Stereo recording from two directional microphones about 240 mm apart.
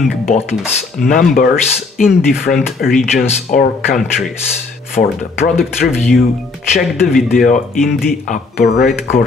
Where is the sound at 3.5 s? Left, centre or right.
Left.